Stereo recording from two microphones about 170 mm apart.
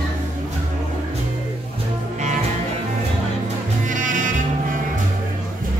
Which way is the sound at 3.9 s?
50° right (ahead or behind).